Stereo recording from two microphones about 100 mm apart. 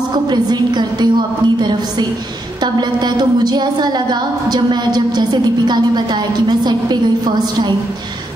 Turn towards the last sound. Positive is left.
turn(degrees=-45)  # may be behind; listen again after turning